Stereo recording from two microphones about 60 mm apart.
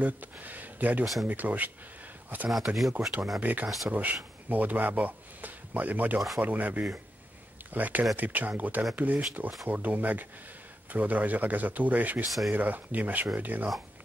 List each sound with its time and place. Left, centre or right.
0.0 s speech: right
2.8 s speech: centre
3.3 s speech: right
3.6 s speech: centre
3.9 s speech: right
12.3 s speech: centre
12.5 s speech: right